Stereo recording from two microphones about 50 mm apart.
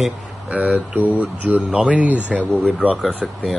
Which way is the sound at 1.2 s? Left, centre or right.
Right.